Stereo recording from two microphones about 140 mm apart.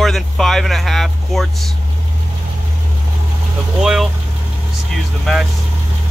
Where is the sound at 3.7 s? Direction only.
Centre (ahead or behind).